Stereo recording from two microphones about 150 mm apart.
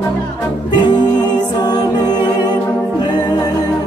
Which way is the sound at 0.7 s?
30° left (ahead or behind).